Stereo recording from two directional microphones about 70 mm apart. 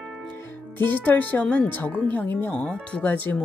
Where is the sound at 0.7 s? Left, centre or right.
Left.